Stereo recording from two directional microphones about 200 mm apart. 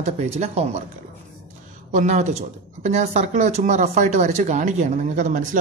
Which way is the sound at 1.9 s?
35° right (ahead or behind).